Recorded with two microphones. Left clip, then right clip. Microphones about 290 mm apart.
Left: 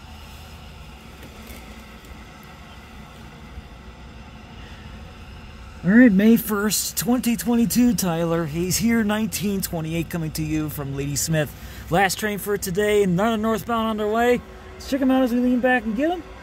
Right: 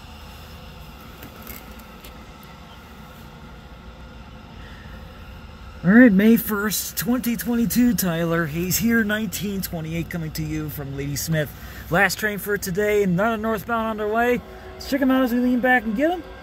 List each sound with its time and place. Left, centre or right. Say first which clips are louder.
5.9 s speech: right 1 dB; centre
6.3 s speech: left 1 dB; centre
15.0 s speech: even; centre